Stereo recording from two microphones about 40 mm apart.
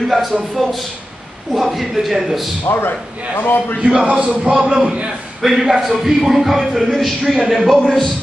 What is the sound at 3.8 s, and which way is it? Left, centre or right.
A man's voice, right.